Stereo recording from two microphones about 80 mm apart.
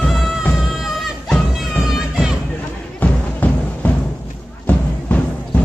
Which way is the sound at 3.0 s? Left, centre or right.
Centre.